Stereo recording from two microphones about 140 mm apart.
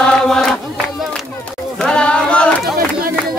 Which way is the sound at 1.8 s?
5° left (ahead or behind).